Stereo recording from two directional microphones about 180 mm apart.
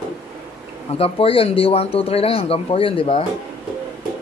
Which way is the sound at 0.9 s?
30° left (ahead or behind).